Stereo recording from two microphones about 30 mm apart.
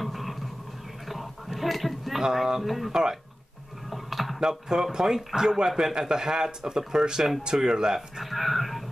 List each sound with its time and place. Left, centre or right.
0.0 s a sound: centre
2.2 s speech: centre
2.6 s a man's voice: centre
2.9 s speech: right
3.9 s typing: centre
4.4 s speech: right
8.2 s a man's voice: centre